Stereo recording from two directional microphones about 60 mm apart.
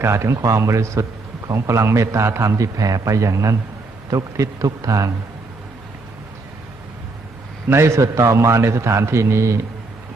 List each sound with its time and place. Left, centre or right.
0.0 s a man's voice: right
2.5 s speech: right
4.1 s a man's voice: right
7.7 s a man's voice: right